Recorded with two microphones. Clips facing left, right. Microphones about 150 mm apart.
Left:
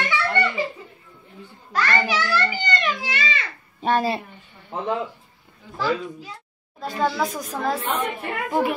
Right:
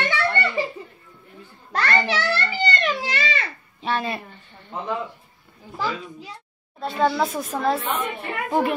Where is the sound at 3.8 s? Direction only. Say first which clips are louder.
Left 4 dB; 45° left (ahead or behind).